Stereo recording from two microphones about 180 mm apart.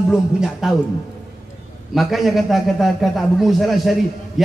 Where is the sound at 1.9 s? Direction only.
Centre (ahead or behind).